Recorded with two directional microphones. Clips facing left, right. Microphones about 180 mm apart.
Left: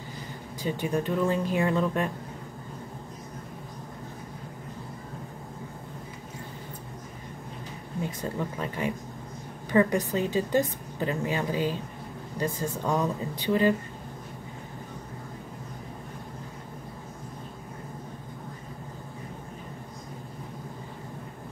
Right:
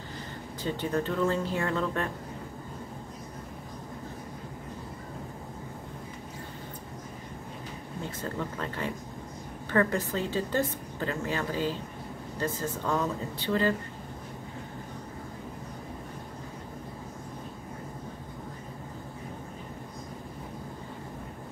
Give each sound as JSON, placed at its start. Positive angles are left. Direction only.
{"t": 0.6, "sound": "a woman's voice", "side_deg": 10}
{"t": 8.0, "sound": "a woman's voice", "side_deg": 15}